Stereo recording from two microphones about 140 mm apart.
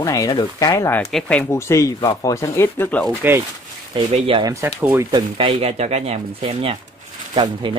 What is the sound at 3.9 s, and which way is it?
Speech, 40° right (ahead or behind).